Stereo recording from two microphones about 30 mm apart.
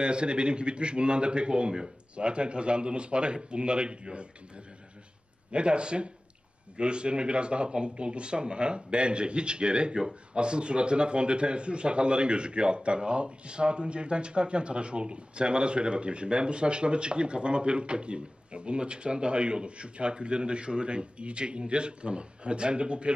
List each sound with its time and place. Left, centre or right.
0.0 s a man's voice: right
5.5 s a man's voice: right